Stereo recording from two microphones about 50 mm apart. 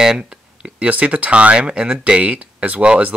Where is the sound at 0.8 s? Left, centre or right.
Right.